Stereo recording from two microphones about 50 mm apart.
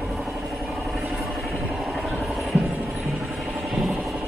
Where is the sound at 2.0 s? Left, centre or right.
Centre.